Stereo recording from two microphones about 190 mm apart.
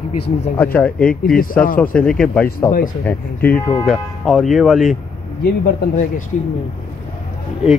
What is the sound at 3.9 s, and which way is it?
Speech, centre (ahead or behind).